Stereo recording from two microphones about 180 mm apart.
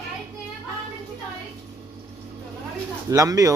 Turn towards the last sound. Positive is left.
turn(degrees=-20)  # may be behind; listen again after turning